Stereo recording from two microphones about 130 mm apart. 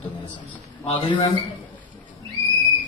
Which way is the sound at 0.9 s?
45° left (ahead or behind).